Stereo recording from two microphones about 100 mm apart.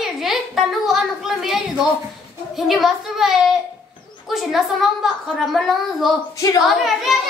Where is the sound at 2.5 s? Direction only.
Centre (ahead or behind).